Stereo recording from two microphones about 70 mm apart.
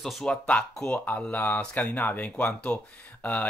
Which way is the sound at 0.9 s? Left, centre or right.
Left.